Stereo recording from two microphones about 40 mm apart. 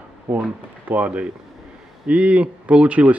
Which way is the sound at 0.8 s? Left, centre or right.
Right.